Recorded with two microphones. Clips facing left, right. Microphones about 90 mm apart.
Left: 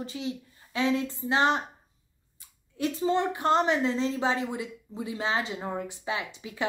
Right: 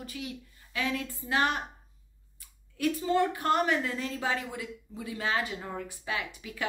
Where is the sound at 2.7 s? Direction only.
25° left (ahead or behind).